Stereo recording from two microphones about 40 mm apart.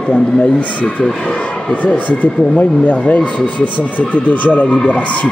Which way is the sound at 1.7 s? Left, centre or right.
Left.